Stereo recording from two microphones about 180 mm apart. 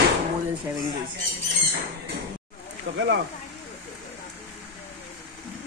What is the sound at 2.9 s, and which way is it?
Speech, 90° right.